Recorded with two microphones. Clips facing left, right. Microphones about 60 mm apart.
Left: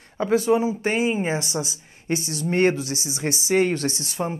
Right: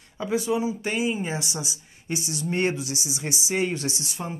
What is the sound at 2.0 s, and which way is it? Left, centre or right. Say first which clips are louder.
A woman's voice: left 4 dB; left.